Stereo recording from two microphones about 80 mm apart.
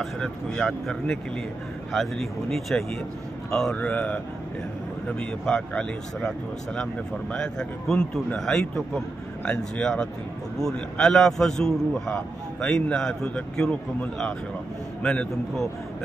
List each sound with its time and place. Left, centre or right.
0.0 s a man's voice: centre
3.7 s speech: centre
5.2 s speech: centre